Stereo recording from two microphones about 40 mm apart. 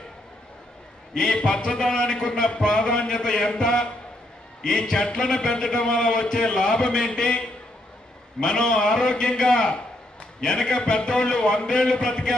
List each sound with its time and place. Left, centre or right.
1.1 s a man's voice: left